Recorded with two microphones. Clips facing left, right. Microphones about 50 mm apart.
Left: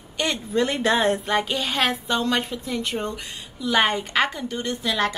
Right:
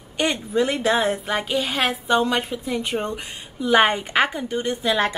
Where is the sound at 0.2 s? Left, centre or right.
Centre.